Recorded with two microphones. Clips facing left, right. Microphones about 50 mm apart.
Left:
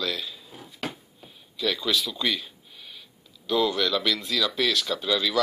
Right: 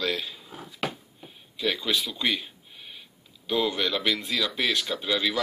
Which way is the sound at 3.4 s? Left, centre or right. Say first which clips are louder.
Left 2 dB; right.